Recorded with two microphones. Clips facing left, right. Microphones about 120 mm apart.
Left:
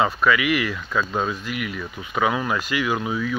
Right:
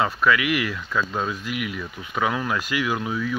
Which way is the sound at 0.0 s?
Centre (ahead or behind).